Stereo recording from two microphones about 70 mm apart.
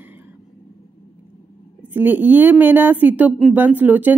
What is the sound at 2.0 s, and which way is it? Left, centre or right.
A woman's voice, right.